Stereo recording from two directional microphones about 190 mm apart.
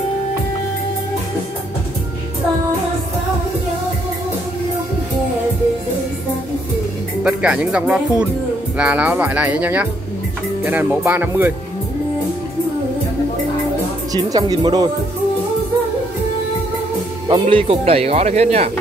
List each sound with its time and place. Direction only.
7.2 s speech: 5° right (ahead or behind)
14.1 s speech: 20° right (ahead or behind)
17.3 s speech: 25° right (ahead or behind)